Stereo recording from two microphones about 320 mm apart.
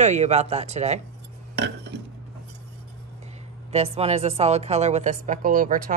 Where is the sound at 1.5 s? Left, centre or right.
Right.